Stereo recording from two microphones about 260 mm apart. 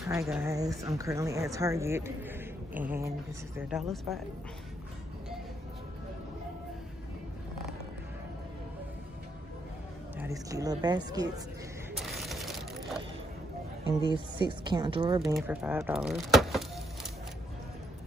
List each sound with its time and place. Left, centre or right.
0.1 s a woman's voice: centre
10.1 s a woman's voice: centre
12.1 s a sound: centre
13.8 s a woman's voice: centre
15.3 s speech: centre